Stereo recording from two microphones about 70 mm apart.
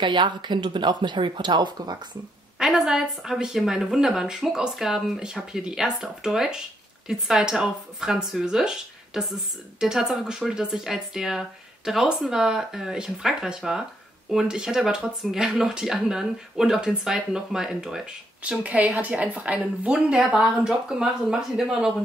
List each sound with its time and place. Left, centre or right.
0.4 s speech: right
2.6 s speech: centre
18.5 s speech: centre
20.2 s speech: centre